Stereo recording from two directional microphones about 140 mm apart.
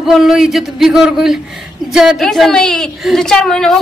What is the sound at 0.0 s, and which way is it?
A woman's voice, centre (ahead or behind).